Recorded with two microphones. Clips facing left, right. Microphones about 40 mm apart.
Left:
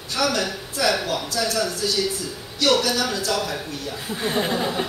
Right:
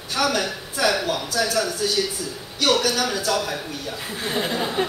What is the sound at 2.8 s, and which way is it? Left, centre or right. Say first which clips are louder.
Speech: right 1 dB; centre.